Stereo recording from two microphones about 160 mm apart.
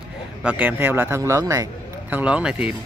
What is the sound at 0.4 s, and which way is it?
Speech, 10° right (ahead or behind).